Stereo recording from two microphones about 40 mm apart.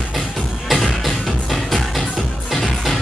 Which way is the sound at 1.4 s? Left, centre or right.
Centre.